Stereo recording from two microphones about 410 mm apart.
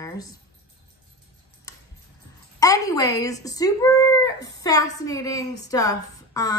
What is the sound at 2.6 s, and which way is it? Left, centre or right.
A woman's voice, centre.